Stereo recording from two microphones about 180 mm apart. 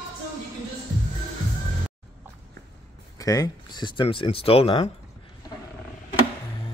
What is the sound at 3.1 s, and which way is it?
Speech, 20° left (ahead or behind).